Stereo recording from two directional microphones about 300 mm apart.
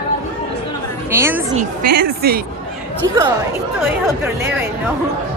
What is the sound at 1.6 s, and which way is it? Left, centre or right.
Speech, right.